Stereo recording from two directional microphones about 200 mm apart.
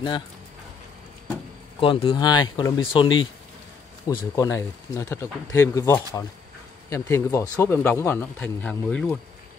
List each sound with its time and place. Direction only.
1.8 s speech: 25° left (ahead or behind); by 9.2 s 5° left (ahead or behind)